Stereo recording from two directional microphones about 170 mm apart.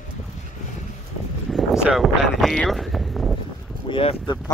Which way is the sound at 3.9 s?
35° left (ahead or behind).